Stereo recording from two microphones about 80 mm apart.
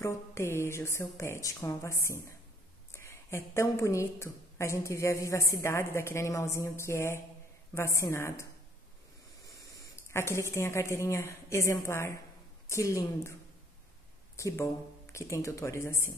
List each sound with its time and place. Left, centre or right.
0.0 s a woman's voice: left
10.0 s a woman's voice: left
14.3 s a woman's voice: left